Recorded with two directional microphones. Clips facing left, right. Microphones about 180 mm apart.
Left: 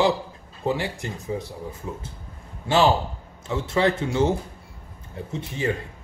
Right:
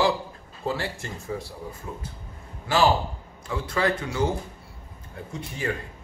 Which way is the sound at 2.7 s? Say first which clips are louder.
Left 2 dB; 25° left (ahead or behind).